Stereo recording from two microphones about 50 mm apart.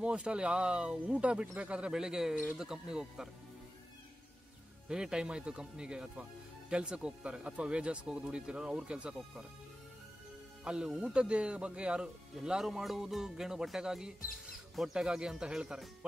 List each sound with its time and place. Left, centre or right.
0.0 s speech: centre
4.8 s speech: centre
10.6 s speech: centre
12.4 s speech: centre